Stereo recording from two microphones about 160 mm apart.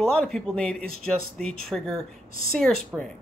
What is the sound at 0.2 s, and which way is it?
A woman's voice, 5° left (ahead or behind).